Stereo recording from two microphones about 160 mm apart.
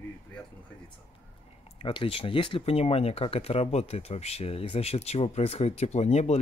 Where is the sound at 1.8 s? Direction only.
35° left (ahead or behind).